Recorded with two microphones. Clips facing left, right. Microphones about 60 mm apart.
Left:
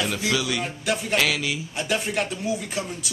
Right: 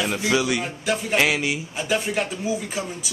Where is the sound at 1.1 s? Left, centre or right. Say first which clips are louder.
Right 4 dB; right.